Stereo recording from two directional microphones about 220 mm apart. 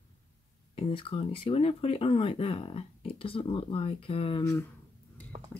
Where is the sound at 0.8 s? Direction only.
25° left (ahead or behind).